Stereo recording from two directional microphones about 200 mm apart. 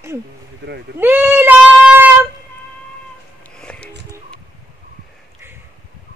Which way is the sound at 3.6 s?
5° left (ahead or behind).